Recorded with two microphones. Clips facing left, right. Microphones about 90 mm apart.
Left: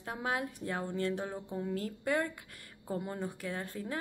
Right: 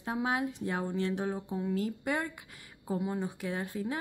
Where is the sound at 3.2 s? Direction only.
20° right (ahead or behind).